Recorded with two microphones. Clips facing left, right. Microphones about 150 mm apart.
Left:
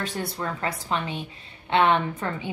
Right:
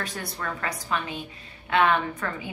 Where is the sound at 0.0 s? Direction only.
25° left (ahead or behind).